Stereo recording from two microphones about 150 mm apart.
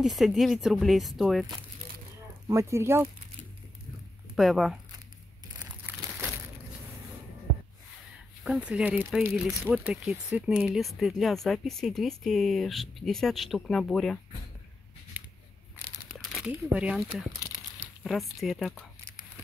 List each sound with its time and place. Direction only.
0.0 s speech: centre (ahead or behind)
2.4 s speech: 20° right (ahead or behind)
4.4 s speech: centre (ahead or behind)
8.5 s speech: 5° right (ahead or behind)
15.2 s scissors: 10° right (ahead or behind)
16.1 s crumpling: centre (ahead or behind)
16.7 s speech: 10° right (ahead or behind)